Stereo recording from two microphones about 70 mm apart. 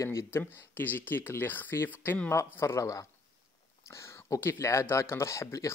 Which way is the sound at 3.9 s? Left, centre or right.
Left.